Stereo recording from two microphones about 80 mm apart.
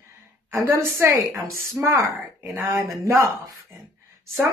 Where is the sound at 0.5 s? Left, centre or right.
Right.